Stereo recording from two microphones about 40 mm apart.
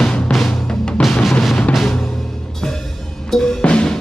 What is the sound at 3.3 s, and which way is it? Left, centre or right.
Drum kit, centre.